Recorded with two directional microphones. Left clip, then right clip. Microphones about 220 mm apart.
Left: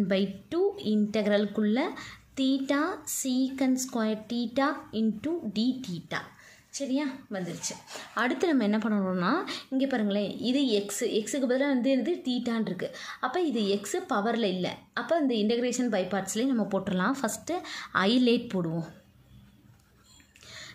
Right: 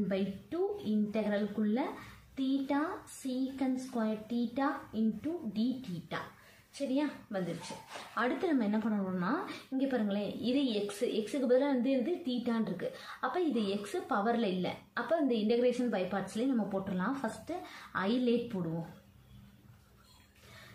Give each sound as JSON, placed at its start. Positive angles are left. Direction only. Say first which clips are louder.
{"t": 0.1, "sound": "speech", "louder": "left 7 dB", "side_deg": 50}
{"t": 6.7, "sound": "a woman's voice", "louder": "left 3 dB", "side_deg": 35}
{"t": 8.1, "sound": "speech", "louder": "left 5 dB", "side_deg": 45}